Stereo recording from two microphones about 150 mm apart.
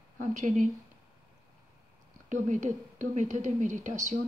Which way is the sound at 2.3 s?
55° right (ahead or behind).